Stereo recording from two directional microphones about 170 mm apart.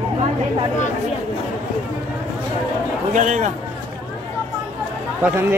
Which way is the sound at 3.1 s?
45° right (ahead or behind).